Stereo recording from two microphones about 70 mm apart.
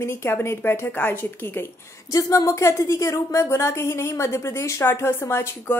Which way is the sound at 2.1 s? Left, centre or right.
Left.